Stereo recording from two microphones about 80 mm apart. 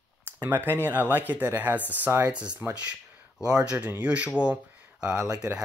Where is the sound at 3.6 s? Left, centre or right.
Centre.